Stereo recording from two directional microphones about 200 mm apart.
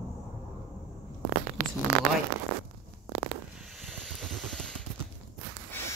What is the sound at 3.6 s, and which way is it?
Hiss, centre (ahead or behind).